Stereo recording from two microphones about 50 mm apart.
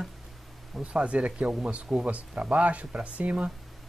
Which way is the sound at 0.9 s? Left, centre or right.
Right.